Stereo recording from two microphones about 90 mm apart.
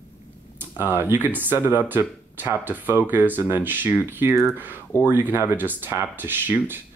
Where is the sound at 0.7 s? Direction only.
25° right (ahead or behind).